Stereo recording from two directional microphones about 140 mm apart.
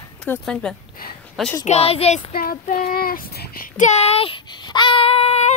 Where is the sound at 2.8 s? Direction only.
90° left; by 5.5 s 45° left (ahead or behind).